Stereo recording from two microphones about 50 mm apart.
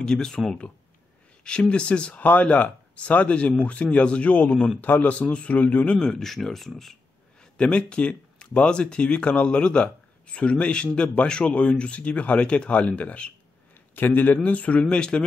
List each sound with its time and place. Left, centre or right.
0.0 s speech: centre
1.4 s speech: left
4.3 s speech: left
5.3 s speech: left
5.9 s speech: centre
7.5 s speech: left
13.9 s speech: left; by 15.2 s centre